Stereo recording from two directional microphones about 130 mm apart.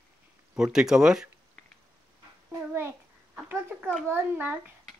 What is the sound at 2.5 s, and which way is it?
A child's voice, 20° right (ahead or behind).